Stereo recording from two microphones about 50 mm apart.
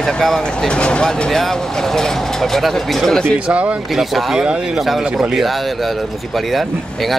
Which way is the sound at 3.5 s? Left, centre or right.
Right.